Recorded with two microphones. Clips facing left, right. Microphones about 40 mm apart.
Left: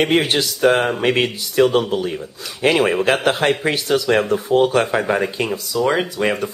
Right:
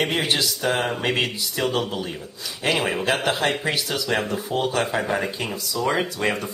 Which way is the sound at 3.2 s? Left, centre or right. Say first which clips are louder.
Left 5 dB; left.